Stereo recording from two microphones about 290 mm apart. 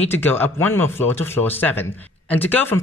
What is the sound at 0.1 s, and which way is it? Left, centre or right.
Speech, centre.